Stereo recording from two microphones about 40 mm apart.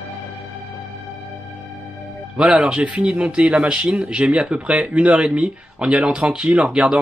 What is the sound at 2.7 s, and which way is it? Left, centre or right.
Speech, right.